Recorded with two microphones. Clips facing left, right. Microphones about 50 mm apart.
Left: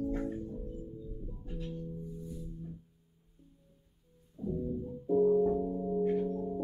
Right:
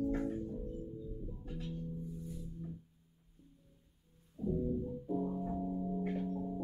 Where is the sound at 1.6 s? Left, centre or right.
Left.